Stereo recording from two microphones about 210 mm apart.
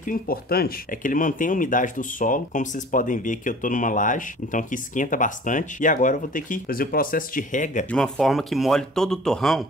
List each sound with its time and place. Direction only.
0.0 s speech: 40° left (ahead or behind)
7.9 s speech: 5° left (ahead or behind)